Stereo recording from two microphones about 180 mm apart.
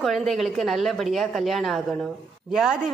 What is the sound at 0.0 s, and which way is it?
A woman's voice, centre (ahead or behind).